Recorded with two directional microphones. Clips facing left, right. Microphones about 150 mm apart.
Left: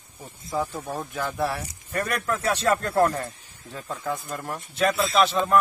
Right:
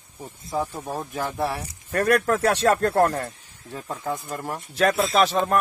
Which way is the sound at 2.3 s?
70° right (ahead or behind).